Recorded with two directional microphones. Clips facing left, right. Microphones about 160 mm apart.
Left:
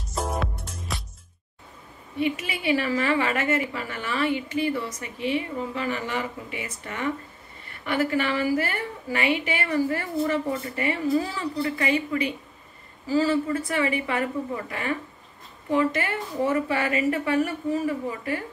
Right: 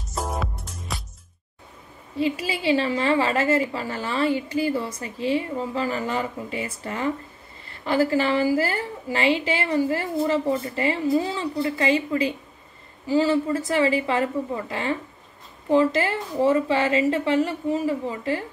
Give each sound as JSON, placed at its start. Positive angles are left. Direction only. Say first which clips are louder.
{"t": 0.1, "sound": "music", "louder": "even", "side_deg": 0}
{"t": 2.4, "sound": "a woman's voice", "louder": "right 3 dB", "side_deg": -30}